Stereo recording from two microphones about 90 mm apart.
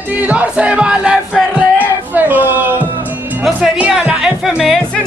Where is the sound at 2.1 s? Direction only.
20° right (ahead or behind).